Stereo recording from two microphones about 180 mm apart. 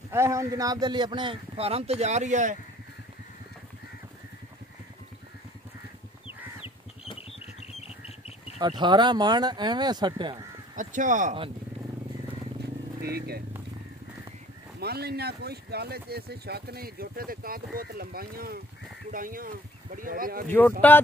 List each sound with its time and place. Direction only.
0.1 s a man's voice: 15° right (ahead or behind); by 2.5 s 40° right (ahead or behind)
6.2 s a sound: 30° left (ahead or behind)
8.5 s a man's voice: 25° right (ahead or behind)
10.8 s speech: 45° right (ahead or behind)
13.0 s speech: 60° right (ahead or behind)
14.8 s speech: 60° right (ahead or behind)
20.4 s speech: 10° left (ahead or behind)